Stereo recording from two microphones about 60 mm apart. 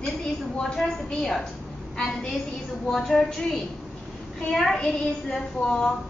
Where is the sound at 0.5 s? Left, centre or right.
Centre.